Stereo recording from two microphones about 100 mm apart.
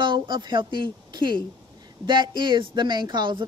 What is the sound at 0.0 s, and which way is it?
A woman's voice, 50° right (ahead or behind).